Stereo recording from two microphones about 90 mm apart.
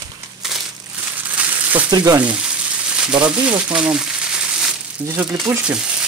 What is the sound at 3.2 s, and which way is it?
Speech, 10° right (ahead or behind).